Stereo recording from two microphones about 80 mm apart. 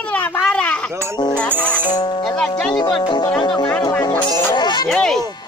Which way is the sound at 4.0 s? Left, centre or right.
Left.